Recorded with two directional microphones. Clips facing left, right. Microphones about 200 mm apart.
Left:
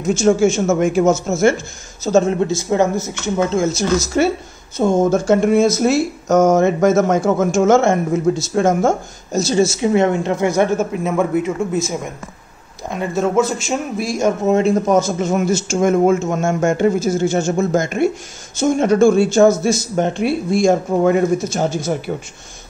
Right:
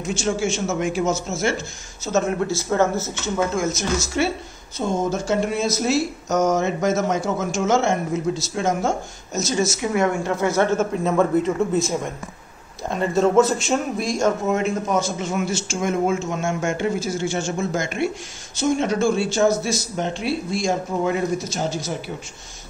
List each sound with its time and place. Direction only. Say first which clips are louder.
0.1 s speech: left 10 dB; 45° left (ahead or behind)
2.0 s speech: left 6 dB; 30° left (ahead or behind)
3.5 s speech: left 6 dB; 30° left (ahead or behind); by 8.9 s 50° left (ahead or behind)
9.3 s speech: left 7 dB; 30° left (ahead or behind); by 11.8 s 10° left (ahead or behind)
12.9 s a man's voice: even; 5° left (ahead or behind)
14.4 s speech: left 7 dB; 30° left (ahead or behind); by 22.1 s 55° left (ahead or behind)